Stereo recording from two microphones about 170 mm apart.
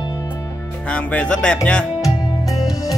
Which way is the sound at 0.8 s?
10° left (ahead or behind).